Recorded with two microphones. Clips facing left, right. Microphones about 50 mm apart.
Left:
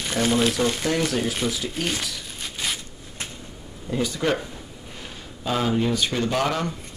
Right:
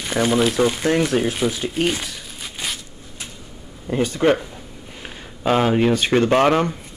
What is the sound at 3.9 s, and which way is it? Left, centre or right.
Speech, right.